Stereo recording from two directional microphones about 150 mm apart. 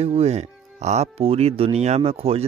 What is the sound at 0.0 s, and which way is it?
Speech, 45° right (ahead or behind).